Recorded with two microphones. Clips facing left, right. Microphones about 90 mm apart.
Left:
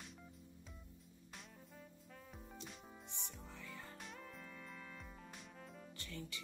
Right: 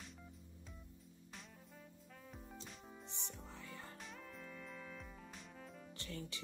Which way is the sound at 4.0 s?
Centre (ahead or behind).